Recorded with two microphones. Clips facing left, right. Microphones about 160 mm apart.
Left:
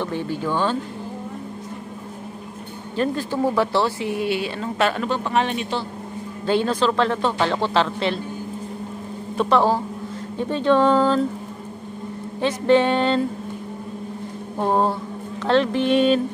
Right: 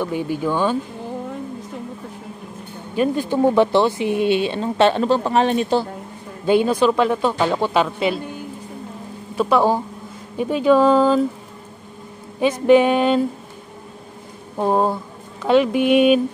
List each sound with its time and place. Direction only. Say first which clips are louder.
0.0 s speech: right 3 dB; 15° right (ahead or behind)
3.0 s speech: right 4 dB; 20° right (ahead or behind); by 5.9 s 40° right (ahead or behind)
6.4 s speech: right 4 dB; 15° right (ahead or behind)
9.4 s speech: right 1 dB; 10° right (ahead or behind)
12.4 s speech: right 4 dB; 10° right (ahead or behind)
14.6 s speech: right 2 dB; 10° right (ahead or behind)